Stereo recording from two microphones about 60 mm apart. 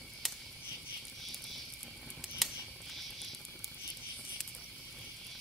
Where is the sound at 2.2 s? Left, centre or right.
Centre.